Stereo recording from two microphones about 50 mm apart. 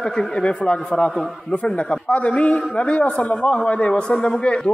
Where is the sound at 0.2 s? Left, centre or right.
Centre.